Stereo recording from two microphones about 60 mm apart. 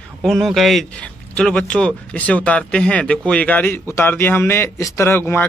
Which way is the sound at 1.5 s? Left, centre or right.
Centre.